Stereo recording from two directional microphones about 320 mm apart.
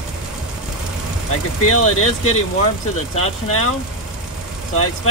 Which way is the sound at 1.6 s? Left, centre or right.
Left.